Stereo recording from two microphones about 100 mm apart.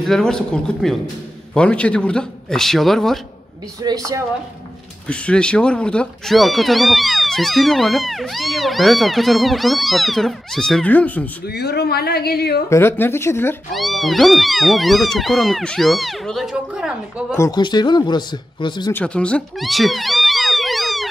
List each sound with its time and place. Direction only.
0.0 s a man's voice: 5° left (ahead or behind)
3.8 s a woman's voice: 35° right (ahead or behind)
5.0 s speech: 10° left (ahead or behind)
10.9 s a man's voice: 15° left (ahead or behind)
12.6 s speech: 25° left (ahead or behind)
13.7 s speech: centre (ahead or behind)
17.5 s speech: 45° left (ahead or behind)
18.9 s a man's voice: 10° left (ahead or behind)
19.6 s cat: centre (ahead or behind)